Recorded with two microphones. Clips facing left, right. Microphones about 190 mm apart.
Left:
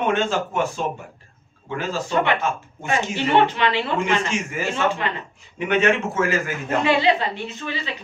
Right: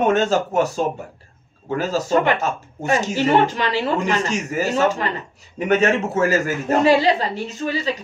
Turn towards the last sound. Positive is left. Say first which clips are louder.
# right 7 dB
turn(degrees=-40)  # may be behind; listen again after turning